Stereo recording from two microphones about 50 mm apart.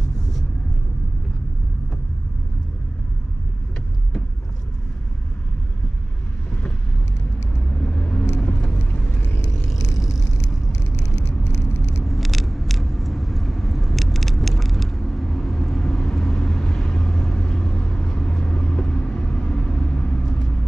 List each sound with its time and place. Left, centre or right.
7.7 s vehicle: left
9.7 s vehicle: centre
12.0 s vehicle: centre; by 20.2 s left